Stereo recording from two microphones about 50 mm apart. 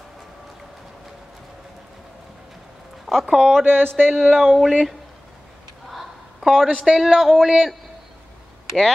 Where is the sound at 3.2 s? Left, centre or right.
Centre.